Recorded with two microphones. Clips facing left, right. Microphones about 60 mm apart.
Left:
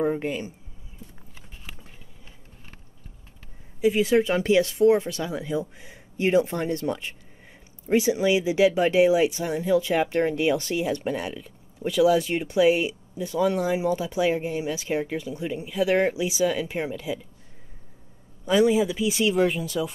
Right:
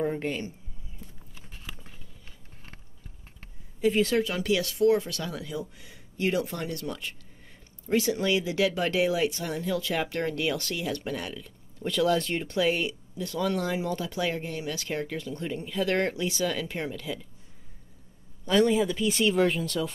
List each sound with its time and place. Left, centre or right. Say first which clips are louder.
0.0 s speech: left 4 dB; centre
3.8 s speech: left 4 dB; centre
4.2 s speech: left 6 dB; left; by 17.3 s centre
18.4 s speech: left 3 dB; centre